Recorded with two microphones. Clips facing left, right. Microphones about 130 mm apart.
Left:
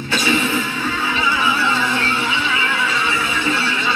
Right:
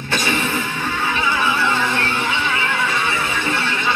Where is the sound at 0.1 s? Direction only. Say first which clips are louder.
Left 2 dB; 50° right (ahead or behind).